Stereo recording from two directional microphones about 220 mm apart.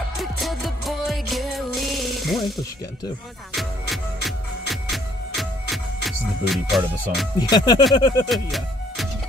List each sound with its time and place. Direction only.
0.2 s music: centre (ahead or behind)
7.3 s speech: 20° left (ahead or behind)
8.3 s music: centre (ahead or behind)